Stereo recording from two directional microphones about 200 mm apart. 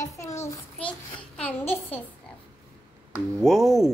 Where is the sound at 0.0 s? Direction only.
15° left (ahead or behind).